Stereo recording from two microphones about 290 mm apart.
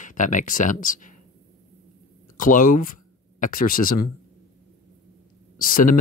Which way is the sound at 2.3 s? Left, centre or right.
Left.